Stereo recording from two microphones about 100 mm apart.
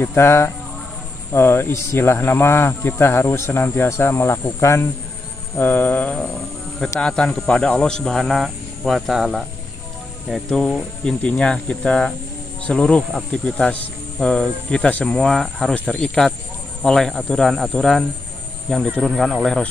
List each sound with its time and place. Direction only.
0.0 s speech: 25° left (ahead or behind); by 19.7 s 5° left (ahead or behind)